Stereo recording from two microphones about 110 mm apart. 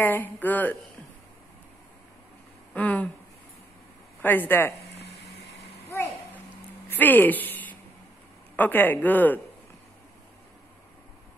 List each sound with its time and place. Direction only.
0.0 s speech: 15° left (ahead or behind)
2.7 s speech: 15° left (ahead or behind)
4.2 s speech: 20° left (ahead or behind)
5.9 s a sound: 25° left (ahead or behind)
6.9 s speech: 15° left (ahead or behind)